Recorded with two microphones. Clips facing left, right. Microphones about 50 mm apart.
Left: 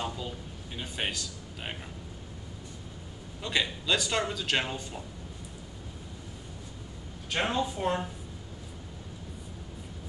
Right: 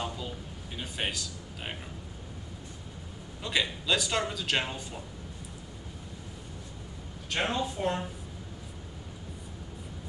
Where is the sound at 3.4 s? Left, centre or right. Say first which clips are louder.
Even; centre.